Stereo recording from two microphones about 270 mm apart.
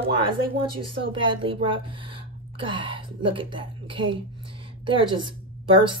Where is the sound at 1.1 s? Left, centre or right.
Centre.